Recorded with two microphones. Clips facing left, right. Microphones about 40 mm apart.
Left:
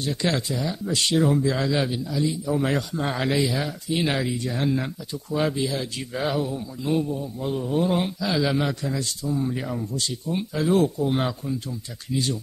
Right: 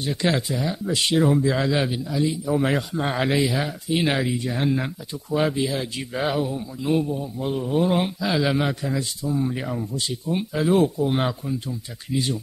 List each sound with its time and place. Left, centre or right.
0.0 s a man's voice: centre